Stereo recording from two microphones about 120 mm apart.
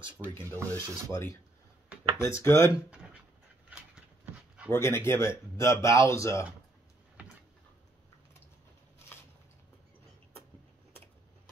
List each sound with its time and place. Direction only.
0.6 s rub: 25° right (ahead or behind)
1.1 s speech: 20° left (ahead or behind)
4.6 s speech: 20° left (ahead or behind)
7.2 s a sound: 10° right (ahead or behind)